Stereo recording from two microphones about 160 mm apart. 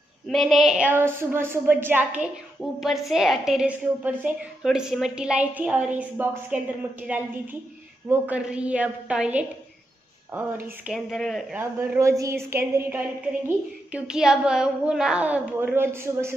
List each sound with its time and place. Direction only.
0.3 s a woman's voice: centre (ahead or behind)
2.8 s a woman's voice: centre (ahead or behind)
10.9 s a woman's voice: centre (ahead or behind)
11.5 s a woman's voice: 10° right (ahead or behind)
13.9 s a woman's voice: 5° right (ahead or behind)